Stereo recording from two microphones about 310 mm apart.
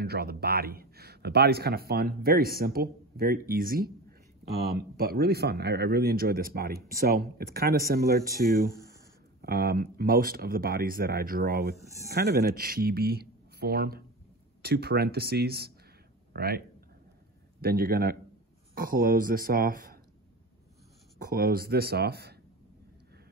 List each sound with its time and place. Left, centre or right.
0.0 s a man's voice: right
21.2 s speech: right